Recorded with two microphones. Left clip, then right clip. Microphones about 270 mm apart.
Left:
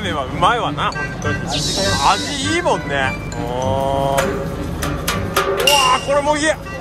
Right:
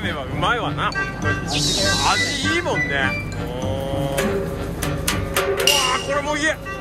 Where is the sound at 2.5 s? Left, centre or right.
Centre.